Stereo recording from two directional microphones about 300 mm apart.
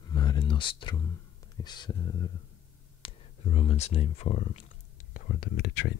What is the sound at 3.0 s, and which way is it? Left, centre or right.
Speech, centre.